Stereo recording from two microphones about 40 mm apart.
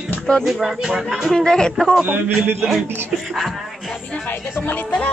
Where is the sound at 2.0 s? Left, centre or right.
Right.